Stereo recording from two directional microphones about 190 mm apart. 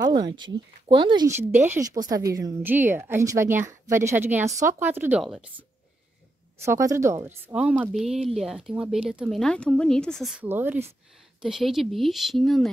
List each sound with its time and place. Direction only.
0.0 s a sound: 20° right (ahead or behind)
0.4 s speech: 25° right (ahead or behind)
1.3 s speech: 10° right (ahead or behind)
6.6 s speech: 15° right (ahead or behind); by 12.7 s centre (ahead or behind)